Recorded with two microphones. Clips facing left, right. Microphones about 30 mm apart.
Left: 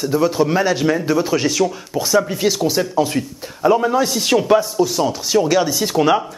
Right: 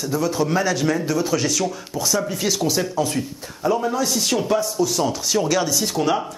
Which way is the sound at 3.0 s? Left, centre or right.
Left.